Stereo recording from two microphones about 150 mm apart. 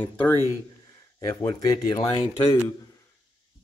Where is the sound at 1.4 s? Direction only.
25° left (ahead or behind).